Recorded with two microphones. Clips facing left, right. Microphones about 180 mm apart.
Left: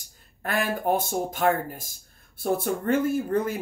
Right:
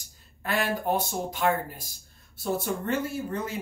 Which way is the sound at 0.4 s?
50° left (ahead or behind).